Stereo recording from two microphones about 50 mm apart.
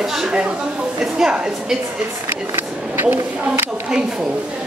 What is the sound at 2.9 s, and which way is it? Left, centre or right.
Speech, right.